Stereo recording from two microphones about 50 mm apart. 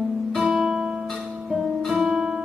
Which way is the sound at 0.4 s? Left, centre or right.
Centre.